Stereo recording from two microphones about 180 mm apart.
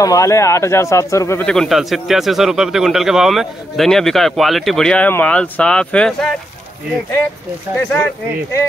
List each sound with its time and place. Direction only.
0.0 s speech: 20° left (ahead or behind)
1.4 s a man's voice: centre (ahead or behind)